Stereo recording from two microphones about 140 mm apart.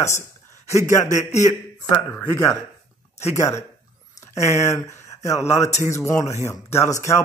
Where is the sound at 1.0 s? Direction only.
60° left (ahead or behind).